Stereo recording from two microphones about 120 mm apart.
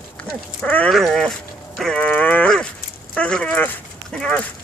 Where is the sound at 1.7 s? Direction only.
5° left (ahead or behind).